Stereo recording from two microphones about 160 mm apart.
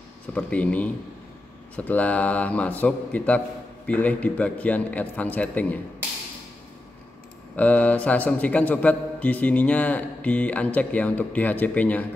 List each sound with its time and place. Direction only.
0.3 s a man's voice: 10° left (ahead or behind)
7.5 s a man's voice: 10° left (ahead or behind)